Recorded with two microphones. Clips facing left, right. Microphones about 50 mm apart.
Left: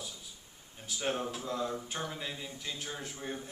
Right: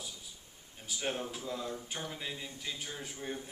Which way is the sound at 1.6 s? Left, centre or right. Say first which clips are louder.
Left 4 dB; left.